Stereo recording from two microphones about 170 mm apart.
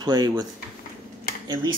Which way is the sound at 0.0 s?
25° right (ahead or behind).